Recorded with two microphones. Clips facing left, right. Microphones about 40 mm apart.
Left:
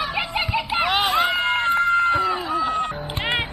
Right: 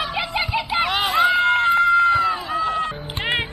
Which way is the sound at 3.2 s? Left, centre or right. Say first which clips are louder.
Right 1 dB; centre.